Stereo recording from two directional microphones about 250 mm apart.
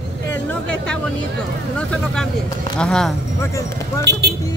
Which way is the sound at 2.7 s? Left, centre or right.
Centre.